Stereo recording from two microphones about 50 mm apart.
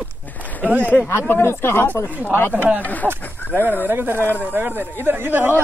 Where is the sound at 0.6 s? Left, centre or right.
Right.